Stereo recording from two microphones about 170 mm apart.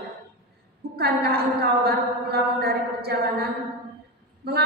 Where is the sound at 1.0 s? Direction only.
70° right (ahead or behind).